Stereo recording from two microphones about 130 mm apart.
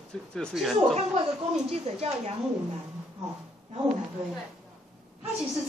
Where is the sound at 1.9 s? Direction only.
50° right (ahead or behind).